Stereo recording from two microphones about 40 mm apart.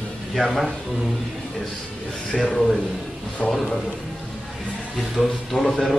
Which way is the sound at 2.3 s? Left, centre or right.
Centre.